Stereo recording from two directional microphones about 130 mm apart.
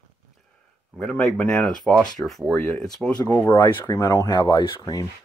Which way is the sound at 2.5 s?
15° left (ahead or behind).